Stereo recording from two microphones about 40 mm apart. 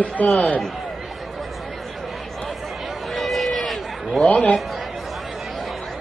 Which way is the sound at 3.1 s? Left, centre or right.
Centre.